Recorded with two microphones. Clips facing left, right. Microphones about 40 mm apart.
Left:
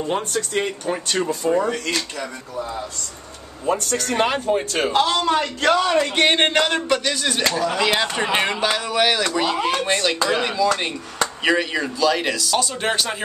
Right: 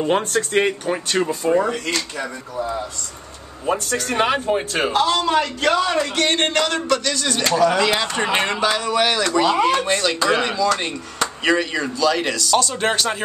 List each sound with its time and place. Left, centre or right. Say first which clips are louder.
0.1 s speech: right 4 dB; right
0.8 s speech: right 2 dB; centre
3.6 s speech: even; centre
5.2 s a man's voice: right 1 dB; centre
6.0 s a man's voice: left 2 dB; left; by 13.2 s centre